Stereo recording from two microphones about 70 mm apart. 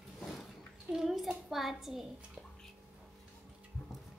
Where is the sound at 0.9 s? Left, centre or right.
Centre.